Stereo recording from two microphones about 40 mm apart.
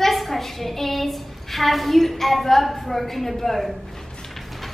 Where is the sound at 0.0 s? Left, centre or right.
Centre.